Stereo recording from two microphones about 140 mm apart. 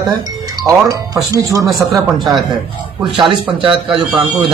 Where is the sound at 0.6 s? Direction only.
25° right (ahead or behind).